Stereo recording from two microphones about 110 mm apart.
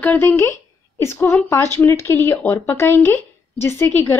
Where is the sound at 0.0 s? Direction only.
15° left (ahead or behind).